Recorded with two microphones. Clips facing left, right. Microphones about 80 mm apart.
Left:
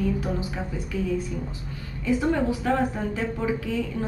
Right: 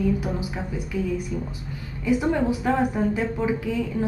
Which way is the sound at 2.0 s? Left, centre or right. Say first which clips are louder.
Right 1 dB; centre.